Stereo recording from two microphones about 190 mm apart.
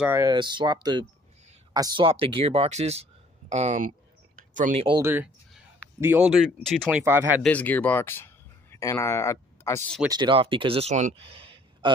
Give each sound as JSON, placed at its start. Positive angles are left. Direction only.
{"t": 0.0, "sound": "speech", "side_deg": -10}
{"t": 0.3, "sound": "speech", "side_deg": -25}
{"t": 4.4, "sound": "a sound", "side_deg": -45}
{"t": 4.7, "sound": "speech", "side_deg": -25}
{"t": 5.0, "sound": "speech", "side_deg": -10}
{"t": 7.0, "sound": "speech", "side_deg": -10}
{"t": 7.4, "sound": "speech", "side_deg": 10}
{"t": 10.1, "sound": "a man's voice", "side_deg": -25}